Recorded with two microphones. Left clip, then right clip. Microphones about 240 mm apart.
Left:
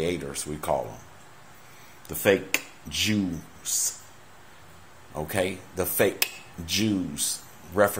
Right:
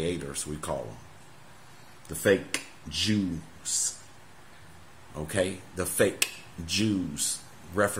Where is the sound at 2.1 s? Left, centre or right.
Centre.